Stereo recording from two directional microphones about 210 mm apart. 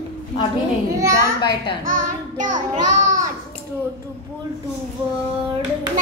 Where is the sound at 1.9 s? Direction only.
35° right (ahead or behind).